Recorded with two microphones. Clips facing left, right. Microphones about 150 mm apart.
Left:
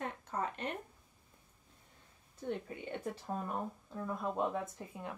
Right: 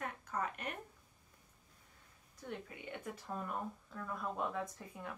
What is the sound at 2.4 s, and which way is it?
Speech, 25° left (ahead or behind).